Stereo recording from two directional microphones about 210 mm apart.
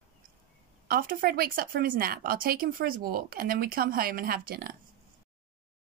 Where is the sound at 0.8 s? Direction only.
45° right (ahead or behind).